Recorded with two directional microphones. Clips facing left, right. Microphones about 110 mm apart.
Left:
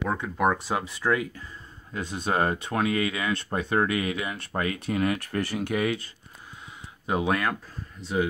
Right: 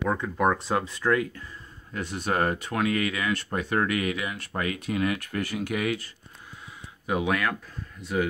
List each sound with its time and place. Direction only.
0.1 s speech: 5° left (ahead or behind); by 6.0 s 30° left (ahead or behind)
7.1 s speech: 30° left (ahead or behind)